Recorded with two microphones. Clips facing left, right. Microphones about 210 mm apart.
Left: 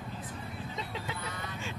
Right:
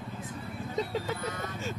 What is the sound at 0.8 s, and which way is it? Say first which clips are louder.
Vehicle: right 10 dB; 45° right (ahead or behind).